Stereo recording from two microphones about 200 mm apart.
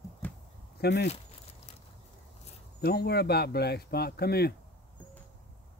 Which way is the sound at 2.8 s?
55° left (ahead or behind).